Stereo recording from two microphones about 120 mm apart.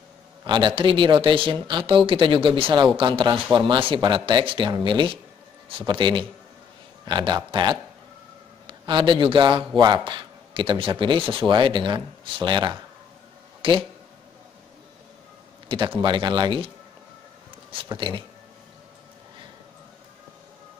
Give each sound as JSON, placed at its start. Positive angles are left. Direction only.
{"t": 0.5, "sound": "a man's voice", "side_deg": -40}
{"t": 13.6, "sound": "a sound", "side_deg": -45}
{"t": 16.0, "sound": "speech", "side_deg": -40}
{"t": 17.8, "sound": "speech", "side_deg": -40}